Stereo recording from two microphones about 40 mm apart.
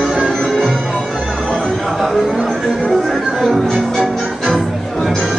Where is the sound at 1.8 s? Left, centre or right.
Centre.